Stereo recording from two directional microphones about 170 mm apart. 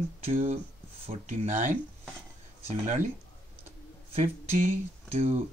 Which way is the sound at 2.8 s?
45° right (ahead or behind).